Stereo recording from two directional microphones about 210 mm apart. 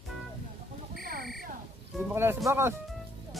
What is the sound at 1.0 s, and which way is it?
Buzzer, 45° right (ahead or behind).